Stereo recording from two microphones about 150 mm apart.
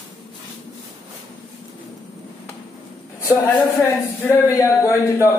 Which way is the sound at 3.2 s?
20° left (ahead or behind).